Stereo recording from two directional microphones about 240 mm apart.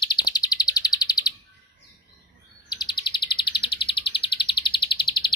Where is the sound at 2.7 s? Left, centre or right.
Centre.